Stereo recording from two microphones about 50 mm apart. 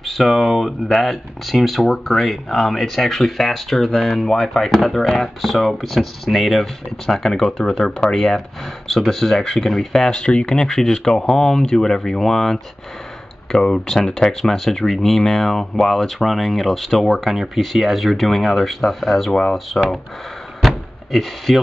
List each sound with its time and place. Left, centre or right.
0.0 s speech: centre
10.2 s speech: left
10.6 s speech: centre
13.8 s speech: centre
20.6 s door: centre